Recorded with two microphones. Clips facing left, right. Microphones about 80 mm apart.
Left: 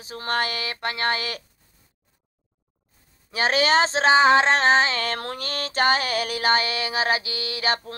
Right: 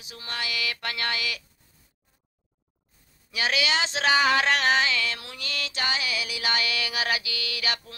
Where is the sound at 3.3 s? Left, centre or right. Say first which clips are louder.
Left 7 dB; left.